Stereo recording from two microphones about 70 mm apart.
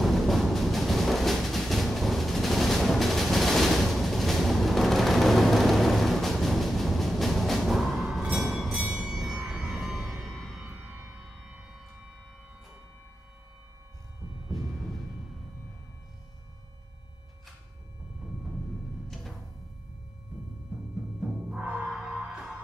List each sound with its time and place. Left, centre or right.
0.0 s a sound: centre
9.5 s vehicle: centre
9.8 s a sound: centre
10.2 s music: centre
10.6 s music: right
14.5 s music: centre
21.2 s timpani: centre
21.8 s music: centre